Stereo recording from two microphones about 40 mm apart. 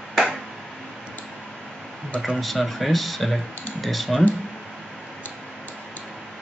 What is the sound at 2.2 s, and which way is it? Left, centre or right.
Speech, centre.